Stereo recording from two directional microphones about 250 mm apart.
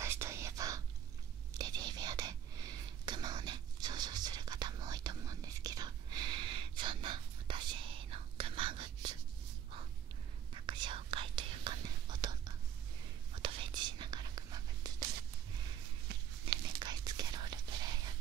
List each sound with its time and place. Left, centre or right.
0.0 s whispering: centre
10.5 s whispering: centre
16.6 s whispering: centre